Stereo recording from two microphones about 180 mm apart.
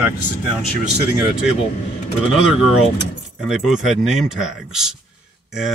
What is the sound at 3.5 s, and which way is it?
Speech, centre (ahead or behind).